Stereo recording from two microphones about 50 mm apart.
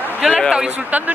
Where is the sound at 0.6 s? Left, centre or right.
Right.